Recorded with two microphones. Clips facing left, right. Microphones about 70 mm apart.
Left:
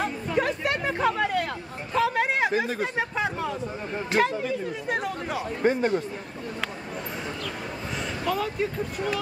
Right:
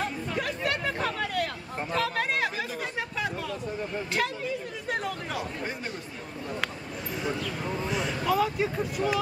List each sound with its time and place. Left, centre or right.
0.0 s chatter: left
2.5 s speech: left
5.6 s a man's voice: left
7.9 s speech: centre